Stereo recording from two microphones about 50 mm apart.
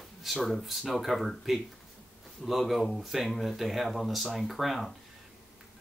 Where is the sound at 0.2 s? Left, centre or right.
Centre.